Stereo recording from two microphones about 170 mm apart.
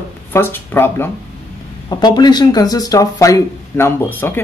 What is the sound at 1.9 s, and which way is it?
Speech, 25° left (ahead or behind).